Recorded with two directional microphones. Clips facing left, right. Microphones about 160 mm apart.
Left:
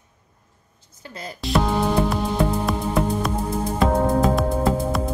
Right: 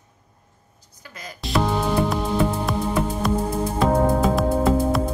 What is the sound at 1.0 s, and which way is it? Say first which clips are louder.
Speech: left 4 dB; 30° left (ahead or behind).